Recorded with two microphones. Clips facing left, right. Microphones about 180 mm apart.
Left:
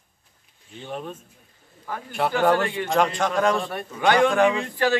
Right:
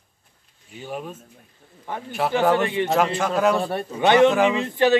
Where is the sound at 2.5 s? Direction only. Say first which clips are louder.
Right 2 dB; 20° right (ahead or behind).